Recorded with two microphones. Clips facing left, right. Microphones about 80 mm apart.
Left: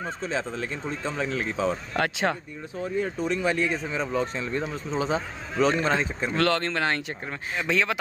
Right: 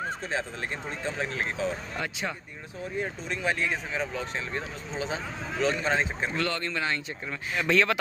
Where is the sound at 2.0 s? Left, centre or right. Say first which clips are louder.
Left 8 dB; left.